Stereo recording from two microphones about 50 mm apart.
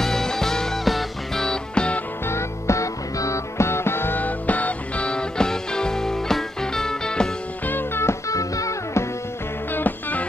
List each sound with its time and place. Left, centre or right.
0.0 s music: centre
1.4 s music: centre
2.2 s music: left
4.2 s music: left; by 7.2 s centre
7.6 s music: left
8.0 s music: left
9.7 s music: left